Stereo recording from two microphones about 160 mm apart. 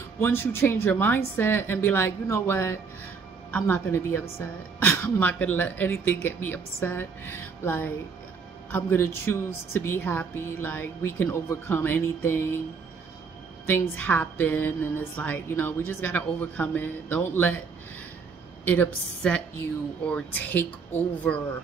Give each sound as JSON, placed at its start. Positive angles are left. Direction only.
{"t": 0.2, "sound": "speech", "side_deg": 15}
{"t": 13.7, "sound": "speech", "side_deg": 10}
{"t": 18.7, "sound": "speech", "side_deg": 10}